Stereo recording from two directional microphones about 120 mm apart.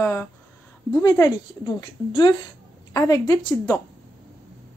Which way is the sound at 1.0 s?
30° left (ahead or behind).